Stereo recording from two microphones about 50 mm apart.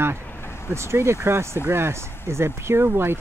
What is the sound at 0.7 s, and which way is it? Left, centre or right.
Speech, right.